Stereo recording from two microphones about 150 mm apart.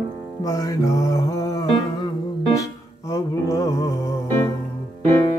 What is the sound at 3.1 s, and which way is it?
Music, 20° left (ahead or behind).